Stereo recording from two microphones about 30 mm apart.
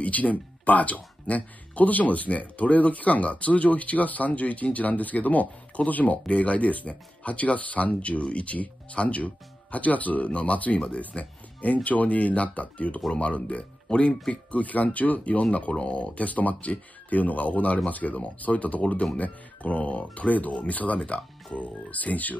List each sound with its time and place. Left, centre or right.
0.0 s speech: left
6.2 s speech: left
13.9 s speech: left
14.3 s speech: left
15.5 s speech: left
16.3 s speech: left